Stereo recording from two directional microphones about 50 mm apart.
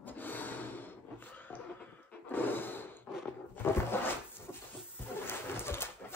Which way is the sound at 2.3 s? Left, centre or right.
Left.